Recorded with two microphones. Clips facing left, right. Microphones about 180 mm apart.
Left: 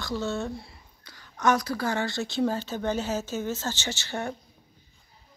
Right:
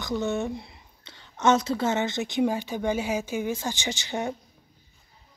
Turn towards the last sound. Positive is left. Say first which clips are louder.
# right 2 dB
turn(degrees=-15)  # may be behind; listen again after turning